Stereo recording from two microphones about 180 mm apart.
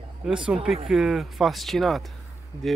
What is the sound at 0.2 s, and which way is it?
Speech, 5° right (ahead or behind).